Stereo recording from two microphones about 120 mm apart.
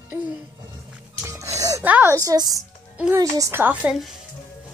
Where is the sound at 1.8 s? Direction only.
15° right (ahead or behind).